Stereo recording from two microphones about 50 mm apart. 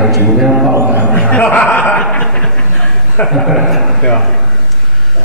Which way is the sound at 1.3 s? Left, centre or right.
Left.